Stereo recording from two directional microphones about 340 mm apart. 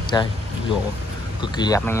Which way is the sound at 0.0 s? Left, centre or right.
Centre.